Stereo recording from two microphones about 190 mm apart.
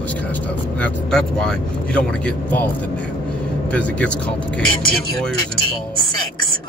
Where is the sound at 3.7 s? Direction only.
5° left (ahead or behind).